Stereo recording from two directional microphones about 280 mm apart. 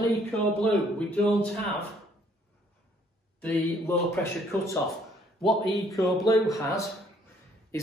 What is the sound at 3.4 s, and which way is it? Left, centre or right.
Speech, centre.